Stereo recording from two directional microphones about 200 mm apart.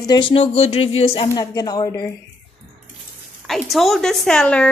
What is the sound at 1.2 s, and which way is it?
Speech, 20° left (ahead or behind).